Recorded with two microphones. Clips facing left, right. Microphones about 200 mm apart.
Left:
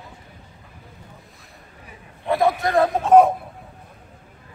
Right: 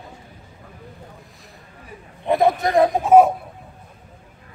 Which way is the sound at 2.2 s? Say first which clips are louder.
Right 2 dB; 20° right (ahead or behind).